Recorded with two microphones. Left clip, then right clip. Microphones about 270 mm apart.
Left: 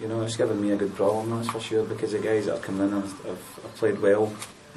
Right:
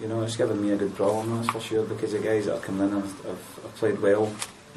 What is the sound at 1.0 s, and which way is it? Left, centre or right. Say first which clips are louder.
Speech: left 1 dB; centre.